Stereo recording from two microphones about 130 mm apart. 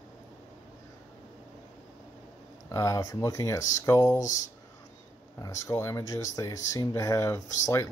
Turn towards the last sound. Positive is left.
turn(degrees=25)  # may be behind; listen again after turning